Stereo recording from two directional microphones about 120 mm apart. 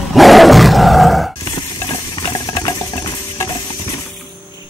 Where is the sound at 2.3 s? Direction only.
25° left (ahead or behind).